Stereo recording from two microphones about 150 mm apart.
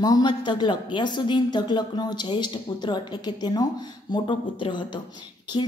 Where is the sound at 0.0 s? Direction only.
25° left (ahead or behind).